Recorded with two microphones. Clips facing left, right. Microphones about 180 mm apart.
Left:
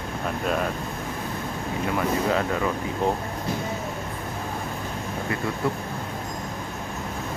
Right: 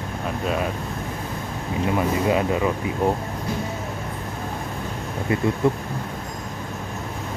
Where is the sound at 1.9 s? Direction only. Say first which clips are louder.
Right 3 dB; 15° right (ahead or behind).